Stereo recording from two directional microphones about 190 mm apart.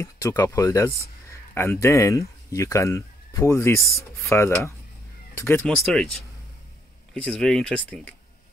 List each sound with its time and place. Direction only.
0.0 s speech: 15° left (ahead or behind)